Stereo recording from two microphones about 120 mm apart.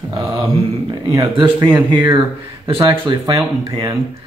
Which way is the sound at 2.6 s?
45° right (ahead or behind).